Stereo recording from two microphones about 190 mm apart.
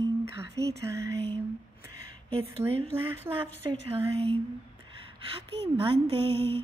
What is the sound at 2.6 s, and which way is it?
A woman's voice, 10° right (ahead or behind).